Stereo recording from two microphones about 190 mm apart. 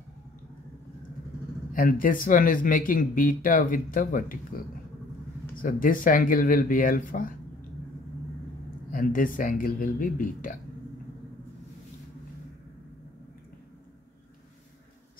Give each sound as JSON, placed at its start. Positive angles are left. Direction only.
{"t": 1.7, "sound": "speech", "side_deg": 45}
{"t": 5.6, "sound": "speech", "side_deg": 45}
{"t": 8.9, "sound": "speech", "side_deg": 45}